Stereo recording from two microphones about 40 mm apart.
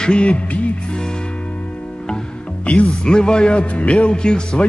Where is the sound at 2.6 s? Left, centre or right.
Left.